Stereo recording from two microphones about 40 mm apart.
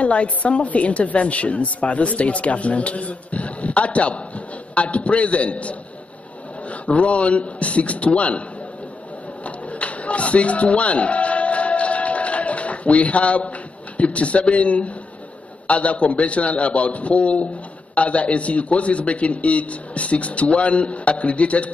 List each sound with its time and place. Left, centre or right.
0.0 s a woman's voice: left
9.4 s music: left
13.9 s a woman's voice: left